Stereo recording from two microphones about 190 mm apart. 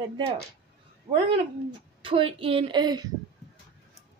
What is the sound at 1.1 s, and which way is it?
A woman's voice, 35° right (ahead or behind).